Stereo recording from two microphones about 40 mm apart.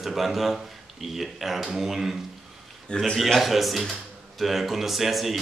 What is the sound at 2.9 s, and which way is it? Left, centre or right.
Speech, left.